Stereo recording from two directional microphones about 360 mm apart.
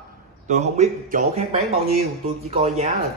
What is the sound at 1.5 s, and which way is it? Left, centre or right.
Speech, right.